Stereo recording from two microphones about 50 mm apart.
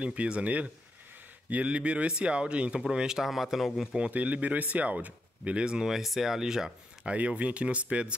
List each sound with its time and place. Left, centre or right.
0.0 s speech: right; by 3.9 s centre
4.1 s speech: right; by 7.1 s centre
7.1 s speech: right